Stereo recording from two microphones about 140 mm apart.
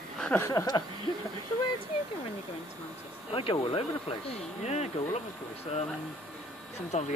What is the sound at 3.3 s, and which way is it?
Speech, 40° left (ahead or behind).